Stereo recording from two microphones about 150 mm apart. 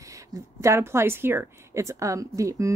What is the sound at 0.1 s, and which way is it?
A woman's voice, 20° right (ahead or behind).